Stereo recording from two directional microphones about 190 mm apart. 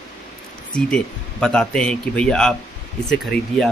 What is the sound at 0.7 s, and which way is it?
Speech, 5° left (ahead or behind).